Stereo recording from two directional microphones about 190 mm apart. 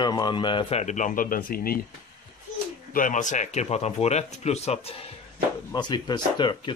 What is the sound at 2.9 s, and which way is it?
Speech, 40° left (ahead or behind).